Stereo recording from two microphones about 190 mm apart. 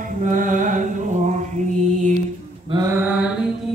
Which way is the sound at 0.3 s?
45° right (ahead or behind).